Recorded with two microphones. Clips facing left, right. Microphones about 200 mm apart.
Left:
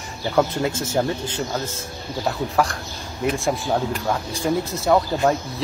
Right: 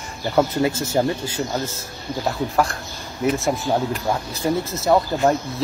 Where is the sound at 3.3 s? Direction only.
5° right (ahead or behind).